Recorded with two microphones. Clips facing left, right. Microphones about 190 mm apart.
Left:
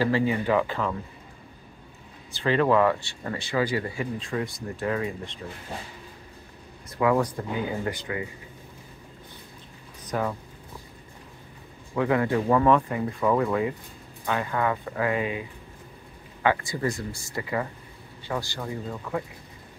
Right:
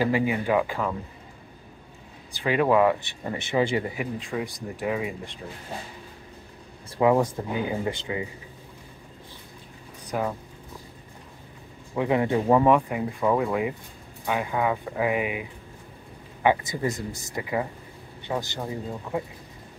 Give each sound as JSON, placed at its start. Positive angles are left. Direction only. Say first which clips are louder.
{"t": 0.0, "sound": "speech", "louder": "even", "side_deg": -15}
{"t": 2.3, "sound": "speech", "louder": "even", "side_deg": -10}
{"t": 7.0, "sound": "speech", "louder": "right 2 dB", "side_deg": -25}
{"t": 10.1, "sound": "speech", "louder": "even", "side_deg": -5}
{"t": 11.9, "sound": "speech", "louder": "even", "side_deg": -20}
{"t": 16.4, "sound": "speech", "louder": "right 2 dB", "side_deg": -20}